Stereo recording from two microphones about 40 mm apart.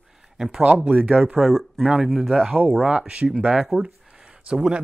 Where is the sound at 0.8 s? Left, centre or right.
Right.